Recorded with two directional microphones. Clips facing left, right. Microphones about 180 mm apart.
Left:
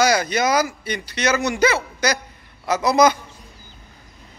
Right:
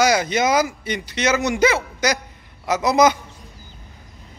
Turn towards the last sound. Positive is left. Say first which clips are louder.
# even
turn(degrees=-20)  # may be behind; listen again after turning